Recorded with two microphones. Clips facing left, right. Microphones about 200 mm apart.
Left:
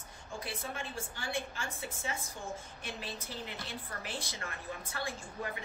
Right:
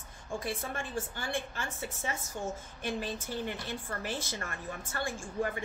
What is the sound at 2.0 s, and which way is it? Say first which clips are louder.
A woman's voice: right 5 dB; 45° right (ahead or behind).